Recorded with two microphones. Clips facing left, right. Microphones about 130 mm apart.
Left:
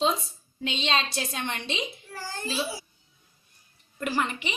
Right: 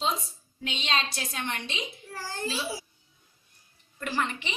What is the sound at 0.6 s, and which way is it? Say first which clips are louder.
A woman's voice: left 3 dB; 25° left (ahead or behind).